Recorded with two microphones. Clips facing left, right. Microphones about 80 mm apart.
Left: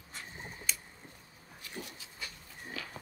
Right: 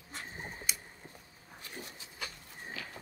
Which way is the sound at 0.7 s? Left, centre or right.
Centre.